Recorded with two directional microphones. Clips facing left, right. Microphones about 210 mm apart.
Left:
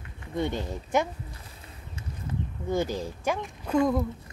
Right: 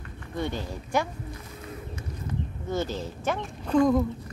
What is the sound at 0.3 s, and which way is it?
Speech, 20° left (ahead or behind).